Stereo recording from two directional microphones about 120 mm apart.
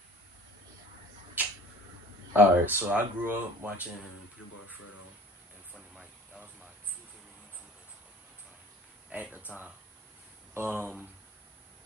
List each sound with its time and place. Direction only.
2.3 s speech: 15° right (ahead or behind)
5.8 s vehicle: 10° right (ahead or behind)
9.1 s speech: 10° right (ahead or behind)
10.5 s speech: 20° right (ahead or behind)